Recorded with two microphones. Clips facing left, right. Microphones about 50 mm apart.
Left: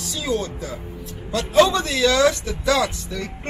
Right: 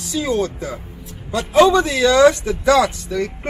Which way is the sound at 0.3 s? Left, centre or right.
Right.